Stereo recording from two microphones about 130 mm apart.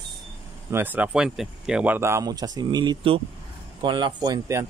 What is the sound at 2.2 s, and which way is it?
Speech, 30° right (ahead or behind).